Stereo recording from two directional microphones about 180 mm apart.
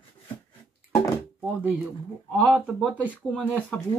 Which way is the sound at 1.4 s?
10° right (ahead or behind).